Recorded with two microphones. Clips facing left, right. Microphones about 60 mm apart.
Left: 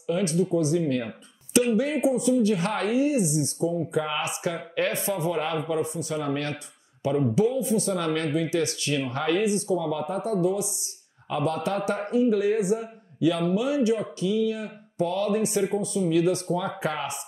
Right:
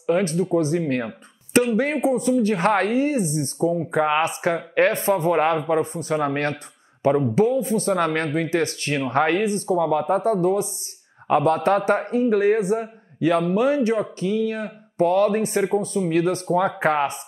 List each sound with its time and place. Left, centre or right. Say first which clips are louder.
0.2 s a man's voice: right 3 dB; right
9.7 s a man's voice: right 7 dB; right